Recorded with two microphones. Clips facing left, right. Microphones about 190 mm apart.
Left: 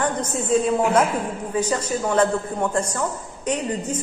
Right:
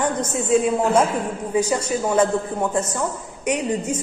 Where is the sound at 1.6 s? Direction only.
10° right (ahead or behind).